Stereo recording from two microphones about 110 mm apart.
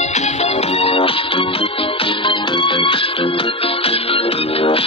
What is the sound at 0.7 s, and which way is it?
Music, 60° left (ahead or behind).